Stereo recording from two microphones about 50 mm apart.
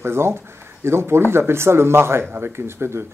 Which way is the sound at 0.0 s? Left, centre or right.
Right.